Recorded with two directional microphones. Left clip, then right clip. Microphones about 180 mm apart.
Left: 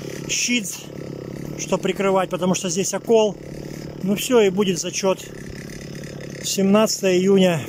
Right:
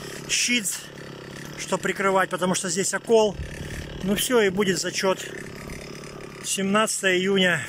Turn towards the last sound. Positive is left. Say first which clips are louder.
# left 4 dB
turn(degrees=20)  # may be behind; listen again after turning